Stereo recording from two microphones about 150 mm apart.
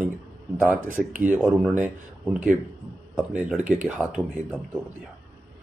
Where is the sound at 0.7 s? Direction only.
65° right (ahead or behind).